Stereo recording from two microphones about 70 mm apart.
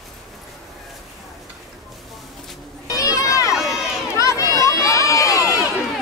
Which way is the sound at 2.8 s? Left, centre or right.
Left.